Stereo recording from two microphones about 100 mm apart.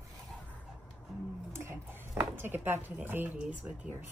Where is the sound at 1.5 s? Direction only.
25° right (ahead or behind).